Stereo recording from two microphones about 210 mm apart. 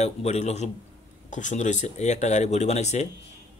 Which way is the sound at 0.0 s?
30° left (ahead or behind).